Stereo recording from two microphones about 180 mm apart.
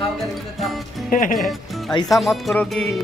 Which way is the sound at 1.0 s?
50° left (ahead or behind).